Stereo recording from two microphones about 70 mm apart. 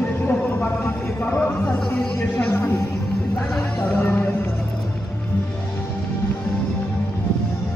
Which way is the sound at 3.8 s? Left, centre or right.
Left.